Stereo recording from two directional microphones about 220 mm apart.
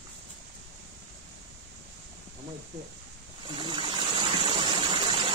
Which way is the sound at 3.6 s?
20° right (ahead or behind).